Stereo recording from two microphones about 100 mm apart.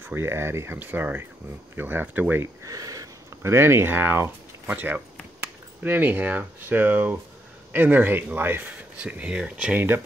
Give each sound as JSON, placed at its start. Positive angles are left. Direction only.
{"t": 0.0, "sound": "speech", "side_deg": -25}
{"t": 2.6, "sound": "speech", "side_deg": -35}
{"t": 9.8, "sound": "speech", "side_deg": -20}